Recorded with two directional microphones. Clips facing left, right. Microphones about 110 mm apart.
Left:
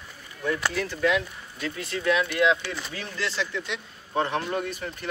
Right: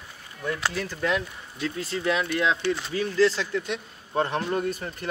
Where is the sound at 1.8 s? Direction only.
30° right (ahead or behind).